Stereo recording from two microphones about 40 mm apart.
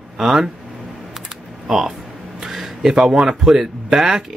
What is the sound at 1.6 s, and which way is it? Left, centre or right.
Speech, centre.